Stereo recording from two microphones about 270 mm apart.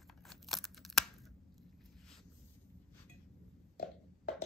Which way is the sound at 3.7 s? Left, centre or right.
Left.